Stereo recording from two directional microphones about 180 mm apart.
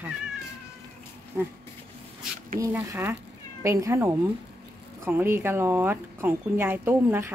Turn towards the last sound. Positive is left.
turn(degrees=-15)  # may be behind; listen again after turning